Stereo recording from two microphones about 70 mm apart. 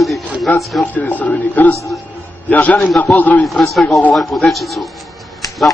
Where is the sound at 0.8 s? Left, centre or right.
Left.